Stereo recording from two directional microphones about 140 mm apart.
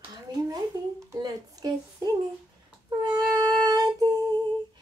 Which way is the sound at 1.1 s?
25° right (ahead or behind).